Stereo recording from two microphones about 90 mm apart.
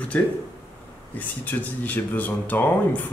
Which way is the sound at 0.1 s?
20° left (ahead or behind).